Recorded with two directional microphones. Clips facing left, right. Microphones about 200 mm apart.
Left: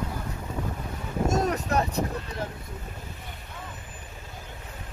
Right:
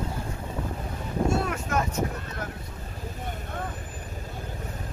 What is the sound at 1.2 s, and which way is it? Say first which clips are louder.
Boat: left 2 dB; 40° left (ahead or behind).